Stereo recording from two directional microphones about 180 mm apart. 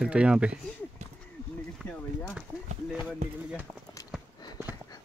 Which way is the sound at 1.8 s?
Centre (ahead or behind).